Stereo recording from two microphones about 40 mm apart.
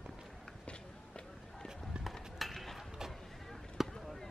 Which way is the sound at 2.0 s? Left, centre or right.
Centre.